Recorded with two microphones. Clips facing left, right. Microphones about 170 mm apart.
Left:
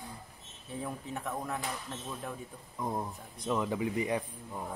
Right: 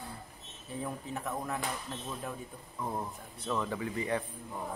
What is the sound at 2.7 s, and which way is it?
A man's voice, 15° left (ahead or behind).